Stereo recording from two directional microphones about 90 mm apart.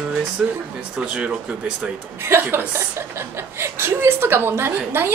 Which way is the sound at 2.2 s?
30° right (ahead or behind).